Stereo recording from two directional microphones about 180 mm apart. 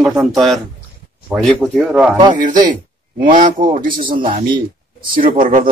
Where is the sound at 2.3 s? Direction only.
45° right (ahead or behind).